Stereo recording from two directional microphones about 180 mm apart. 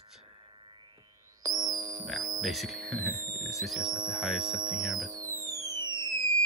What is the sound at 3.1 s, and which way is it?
Music, 15° right (ahead or behind).